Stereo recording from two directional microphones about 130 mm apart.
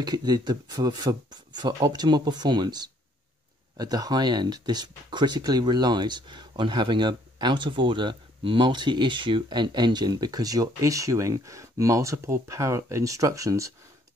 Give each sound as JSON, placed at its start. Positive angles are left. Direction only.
{"t": 0.0, "sound": "speech", "side_deg": -30}